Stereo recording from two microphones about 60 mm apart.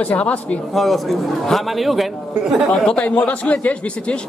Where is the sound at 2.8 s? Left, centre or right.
Centre.